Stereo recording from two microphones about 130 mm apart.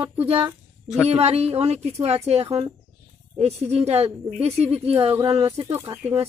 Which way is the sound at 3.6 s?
55° right (ahead or behind).